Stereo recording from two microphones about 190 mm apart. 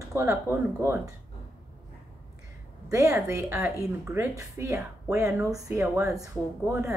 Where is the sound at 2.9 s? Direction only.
15° right (ahead or behind).